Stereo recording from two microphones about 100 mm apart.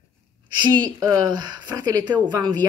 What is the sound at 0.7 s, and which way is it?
Speech, 50° right (ahead or behind).